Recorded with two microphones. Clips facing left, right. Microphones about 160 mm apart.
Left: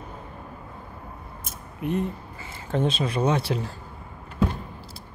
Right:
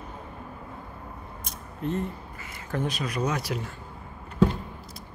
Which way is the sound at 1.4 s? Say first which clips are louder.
Left 1 dB; 15° left (ahead or behind).